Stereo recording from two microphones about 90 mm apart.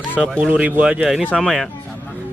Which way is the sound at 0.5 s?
15° right (ahead or behind).